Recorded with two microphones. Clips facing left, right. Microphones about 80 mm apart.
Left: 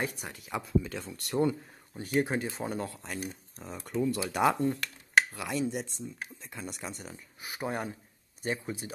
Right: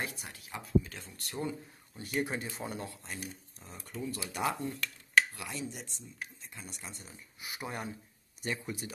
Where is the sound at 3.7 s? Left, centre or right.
Left.